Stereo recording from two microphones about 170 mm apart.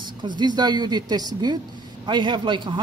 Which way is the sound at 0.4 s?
25° right (ahead or behind).